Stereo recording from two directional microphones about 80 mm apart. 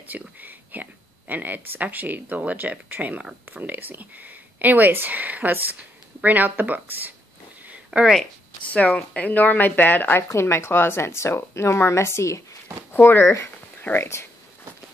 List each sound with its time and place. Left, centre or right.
0.1 s speech: right
7.7 s a sound: centre
8.6 s speech: centre; by 14.2 s left